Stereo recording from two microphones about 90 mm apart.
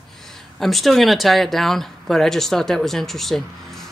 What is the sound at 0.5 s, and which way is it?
Speech, centre (ahead or behind).